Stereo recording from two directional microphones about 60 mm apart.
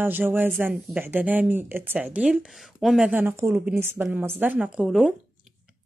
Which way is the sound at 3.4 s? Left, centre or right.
Right.